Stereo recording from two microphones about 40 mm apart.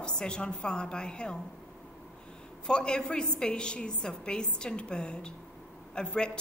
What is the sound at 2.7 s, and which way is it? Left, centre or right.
A woman's voice, left.